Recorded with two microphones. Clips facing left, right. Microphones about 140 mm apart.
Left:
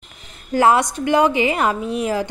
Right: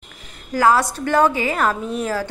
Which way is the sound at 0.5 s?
25° left (ahead or behind).